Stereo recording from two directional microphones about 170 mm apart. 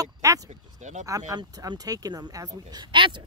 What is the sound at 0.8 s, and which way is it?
Speech, 45° right (ahead or behind).